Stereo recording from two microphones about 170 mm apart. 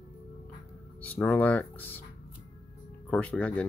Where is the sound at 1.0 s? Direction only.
10° left (ahead or behind).